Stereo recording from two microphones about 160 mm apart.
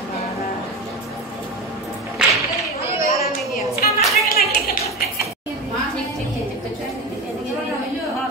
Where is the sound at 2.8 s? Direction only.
20° right (ahead or behind).